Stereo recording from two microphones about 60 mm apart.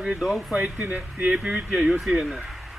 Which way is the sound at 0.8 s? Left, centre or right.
Right.